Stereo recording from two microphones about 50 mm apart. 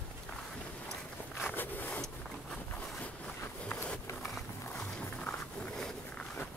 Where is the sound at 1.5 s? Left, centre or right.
Left.